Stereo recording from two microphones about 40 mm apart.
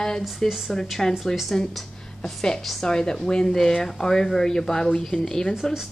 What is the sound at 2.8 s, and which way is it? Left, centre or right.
A woman's voice, centre.